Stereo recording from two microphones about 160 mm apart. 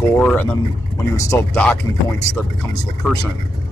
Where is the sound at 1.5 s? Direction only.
5° left (ahead or behind).